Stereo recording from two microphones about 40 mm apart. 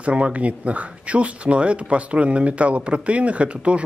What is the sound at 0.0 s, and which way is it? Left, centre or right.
Speech, right.